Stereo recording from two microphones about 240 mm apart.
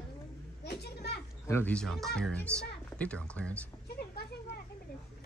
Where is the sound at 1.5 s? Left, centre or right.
Centre.